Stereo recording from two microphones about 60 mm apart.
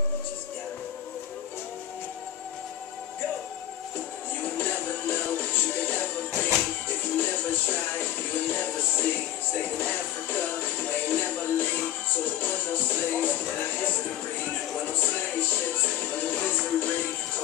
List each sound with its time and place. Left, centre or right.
4.6 s music: left
9.8 s music: left
15.8 s music: left